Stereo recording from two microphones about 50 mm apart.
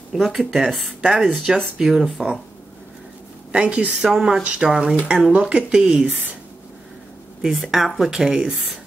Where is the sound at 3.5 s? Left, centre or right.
Right.